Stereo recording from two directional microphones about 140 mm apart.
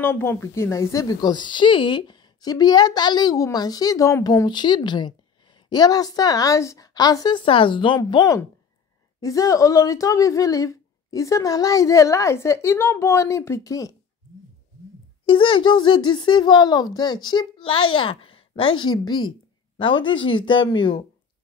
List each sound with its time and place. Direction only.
0.0 s speech: 15° left (ahead or behind)
15.2 s speech: 40° left (ahead or behind)